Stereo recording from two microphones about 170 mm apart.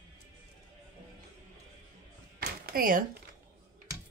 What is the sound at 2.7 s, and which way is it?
Speech, 55° right (ahead or behind).